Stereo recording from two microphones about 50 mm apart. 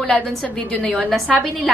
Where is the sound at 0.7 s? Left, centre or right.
Left.